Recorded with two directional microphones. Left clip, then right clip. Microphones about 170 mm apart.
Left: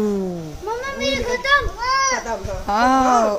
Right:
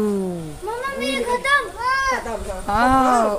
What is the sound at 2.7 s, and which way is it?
Speech, 5° left (ahead or behind).